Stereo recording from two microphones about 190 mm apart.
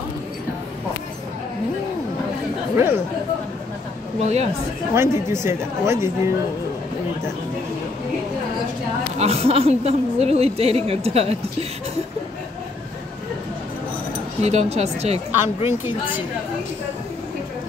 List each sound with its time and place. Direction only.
2.7 s speech: 10° right (ahead or behind)
4.2 s a woman's voice: 35° right (ahead or behind)
4.9 s a woman's voice: 15° right (ahead or behind)
9.2 s a woman's voice: 35° right (ahead or behind)
14.4 s a woman's voice: 35° right (ahead or behind)